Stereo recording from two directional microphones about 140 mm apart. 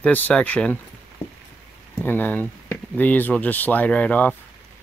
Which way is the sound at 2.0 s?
15° left (ahead or behind).